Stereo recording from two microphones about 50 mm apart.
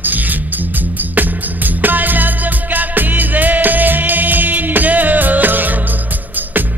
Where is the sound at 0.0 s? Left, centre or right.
Right.